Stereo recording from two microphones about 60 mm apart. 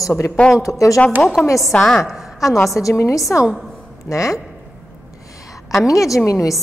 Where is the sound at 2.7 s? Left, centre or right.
Left.